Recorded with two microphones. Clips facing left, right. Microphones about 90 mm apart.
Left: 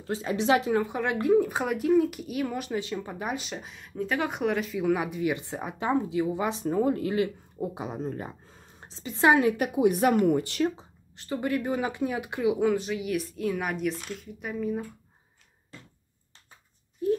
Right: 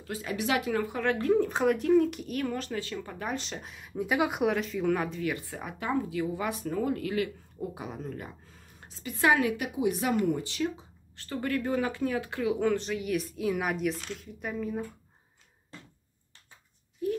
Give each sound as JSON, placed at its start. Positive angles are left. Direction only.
{"t": 0.0, "sound": "speech", "side_deg": 25}
{"t": 1.2, "sound": "speech", "side_deg": 10}
{"t": 9.6, "sound": "speech", "side_deg": 55}
{"t": 11.1, "sound": "speech", "side_deg": 15}
{"t": 17.0, "sound": "a sound", "side_deg": 30}